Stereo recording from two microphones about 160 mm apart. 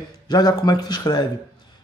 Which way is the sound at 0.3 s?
25° left (ahead or behind).